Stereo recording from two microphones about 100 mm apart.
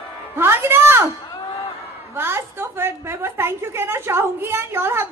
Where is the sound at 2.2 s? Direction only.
25° right (ahead or behind).